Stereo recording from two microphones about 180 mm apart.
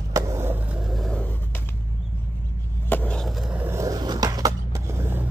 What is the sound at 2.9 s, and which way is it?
Skateboard, 5° left (ahead or behind).